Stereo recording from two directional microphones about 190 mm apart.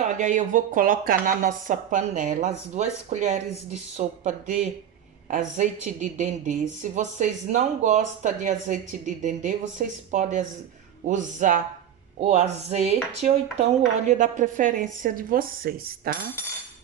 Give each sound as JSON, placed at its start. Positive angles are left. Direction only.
{"t": 0.0, "sound": "a woman's voice", "side_deg": -40}